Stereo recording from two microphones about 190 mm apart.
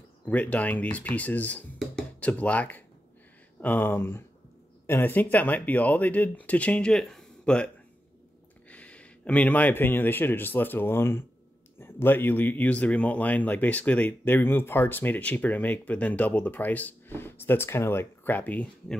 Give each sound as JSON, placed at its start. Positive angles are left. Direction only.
{"t": 0.3, "sound": "a man's voice", "side_deg": 10}